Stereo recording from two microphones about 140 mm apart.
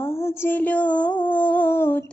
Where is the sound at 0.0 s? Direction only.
15° left (ahead or behind).